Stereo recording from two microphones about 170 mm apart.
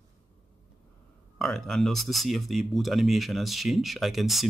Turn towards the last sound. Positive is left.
turn(degrees=0)  # may be behind; listen again after turning